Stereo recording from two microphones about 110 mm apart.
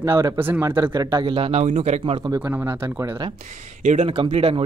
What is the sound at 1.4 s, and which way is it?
Speech, 65° right (ahead or behind).